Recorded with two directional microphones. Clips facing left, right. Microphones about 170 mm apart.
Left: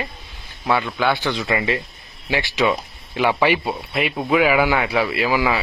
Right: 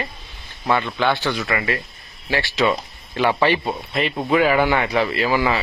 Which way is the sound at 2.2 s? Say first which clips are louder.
Even; 15° left (ahead or behind).